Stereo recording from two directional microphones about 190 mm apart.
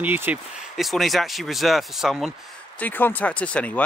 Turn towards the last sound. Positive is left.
turn(degrees=5)  # may be behind; listen again after turning